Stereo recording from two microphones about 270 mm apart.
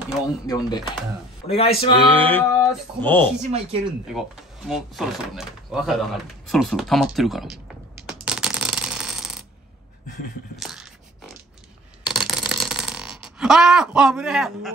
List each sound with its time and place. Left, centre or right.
0.5 s speech: centre
2.1 s speech: centre
3.4 s speech: right
4.1 s speech: centre
8.1 s coin: centre
10.5 s a sound: centre